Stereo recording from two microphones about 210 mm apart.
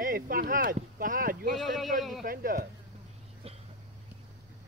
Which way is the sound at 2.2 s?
45° right (ahead or behind).